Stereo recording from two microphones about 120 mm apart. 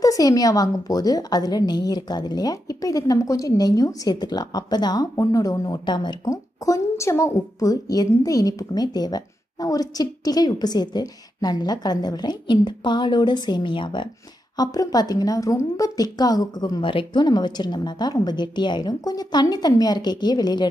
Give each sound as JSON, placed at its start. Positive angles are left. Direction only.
{"t": 0.0, "sound": "a woman's voice", "side_deg": 30}